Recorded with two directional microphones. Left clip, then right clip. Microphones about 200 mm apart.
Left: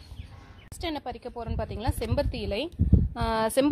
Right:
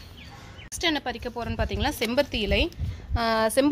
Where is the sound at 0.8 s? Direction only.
30° left (ahead or behind).